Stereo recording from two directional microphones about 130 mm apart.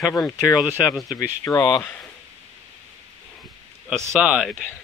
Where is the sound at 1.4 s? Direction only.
30° left (ahead or behind).